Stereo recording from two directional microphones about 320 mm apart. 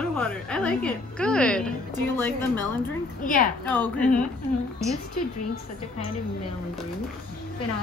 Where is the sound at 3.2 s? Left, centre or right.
Left.